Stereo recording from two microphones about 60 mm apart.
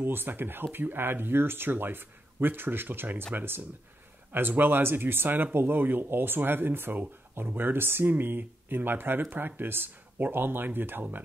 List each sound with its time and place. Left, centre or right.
0.0 s speech: right